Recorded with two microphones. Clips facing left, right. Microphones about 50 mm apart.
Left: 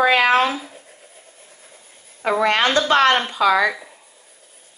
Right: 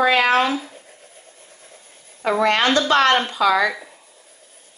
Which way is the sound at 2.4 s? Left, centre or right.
Left.